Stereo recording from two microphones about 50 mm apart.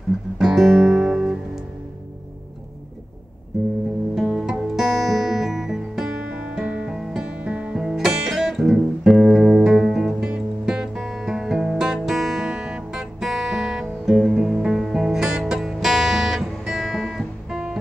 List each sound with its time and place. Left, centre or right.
0.4 s music: centre
4.1 s music: centre
6.9 s music: centre
7.2 s music: right
7.7 s music: centre
10.2 s music: centre